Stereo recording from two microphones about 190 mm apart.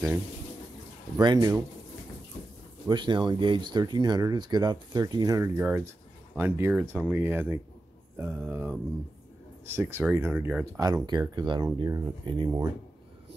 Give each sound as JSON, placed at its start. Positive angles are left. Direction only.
{"t": 1.1, "sound": "speech", "side_deg": -20}
{"t": 2.9, "sound": "speech", "side_deg": -25}